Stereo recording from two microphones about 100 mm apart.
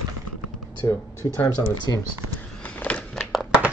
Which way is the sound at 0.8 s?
40° left (ahead or behind).